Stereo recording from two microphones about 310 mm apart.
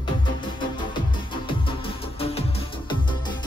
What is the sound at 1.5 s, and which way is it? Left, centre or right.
Music, centre.